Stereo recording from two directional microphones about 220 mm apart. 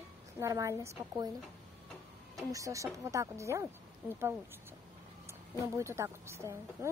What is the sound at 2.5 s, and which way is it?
A woman's voice, 15° right (ahead or behind).